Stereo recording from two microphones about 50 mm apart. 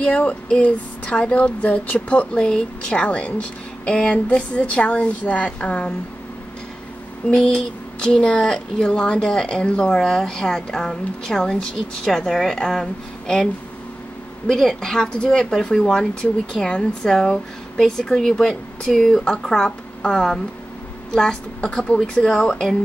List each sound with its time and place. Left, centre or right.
0.0 s speech: left
7.5 s speech: centre
14.5 s speech: centre